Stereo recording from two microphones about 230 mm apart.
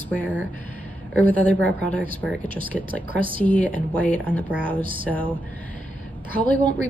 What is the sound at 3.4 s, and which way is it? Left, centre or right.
Speech, centre.